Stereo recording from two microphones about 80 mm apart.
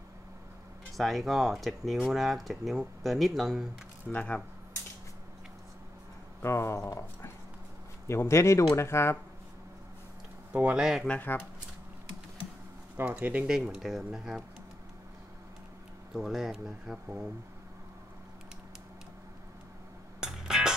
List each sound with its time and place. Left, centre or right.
0.9 s speech: centre
4.1 s speech: centre
6.4 s speech: left
8.1 s speech: left
10.5 s speech: right
10.8 s speech: centre
11.1 s speech: left
12.9 s speech: right
13.5 s speech: centre
16.1 s speech: centre
20.2 s music: centre